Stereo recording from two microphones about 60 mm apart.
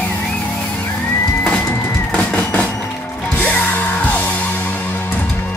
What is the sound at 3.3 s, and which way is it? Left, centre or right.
Music, left.